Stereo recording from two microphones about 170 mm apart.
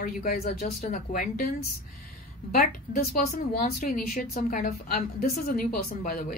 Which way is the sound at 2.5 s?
55° left (ahead or behind).